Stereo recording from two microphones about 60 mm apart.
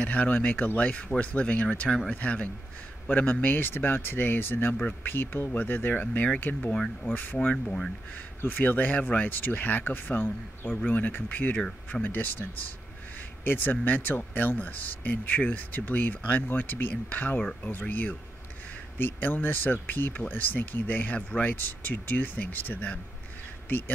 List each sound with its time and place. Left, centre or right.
0.0 s speech: left
6.7 s speech: centre
8.4 s speech: left